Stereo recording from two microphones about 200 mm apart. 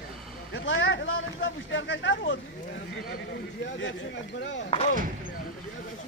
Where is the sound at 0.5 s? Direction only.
70° left (ahead or behind).